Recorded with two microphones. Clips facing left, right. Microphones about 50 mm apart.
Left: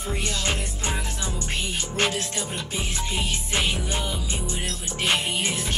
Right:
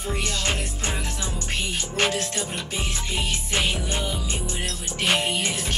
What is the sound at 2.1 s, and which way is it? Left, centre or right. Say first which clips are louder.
Music: right 1 dB; right.